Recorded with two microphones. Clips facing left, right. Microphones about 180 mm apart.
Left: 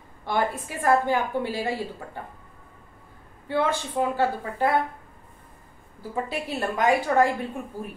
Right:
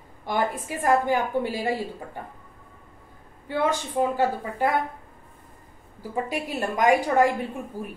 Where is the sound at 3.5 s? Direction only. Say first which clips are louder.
Even; 15° right (ahead or behind).